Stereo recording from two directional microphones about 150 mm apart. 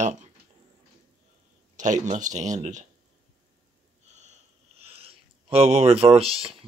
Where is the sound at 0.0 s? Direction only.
50° right (ahead or behind).